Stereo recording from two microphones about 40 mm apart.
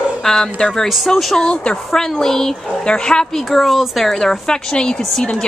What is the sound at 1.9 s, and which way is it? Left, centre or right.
Speech, centre.